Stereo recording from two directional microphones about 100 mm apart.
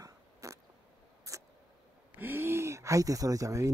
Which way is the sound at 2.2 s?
20° right (ahead or behind).